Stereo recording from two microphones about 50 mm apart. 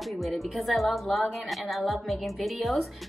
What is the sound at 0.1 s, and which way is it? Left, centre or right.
A woman's voice, centre.